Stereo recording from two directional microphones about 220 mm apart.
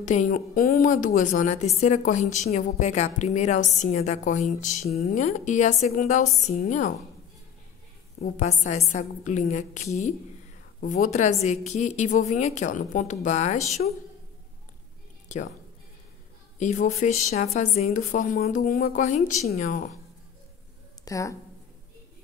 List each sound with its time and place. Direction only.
0.0 s a woman's voice: 35° left (ahead or behind)
8.2 s a woman's voice: 35° left (ahead or behind)
16.5 s a woman's voice: 35° left (ahead or behind)
21.0 s speech: 15° left (ahead or behind)